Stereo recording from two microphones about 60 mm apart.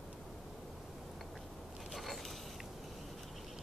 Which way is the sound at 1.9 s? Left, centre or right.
Centre.